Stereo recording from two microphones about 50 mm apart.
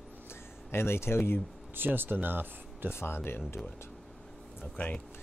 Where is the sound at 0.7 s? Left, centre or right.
Left.